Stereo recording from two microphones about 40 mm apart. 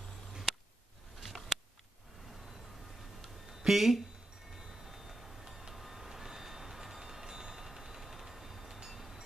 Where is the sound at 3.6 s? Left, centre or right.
Centre.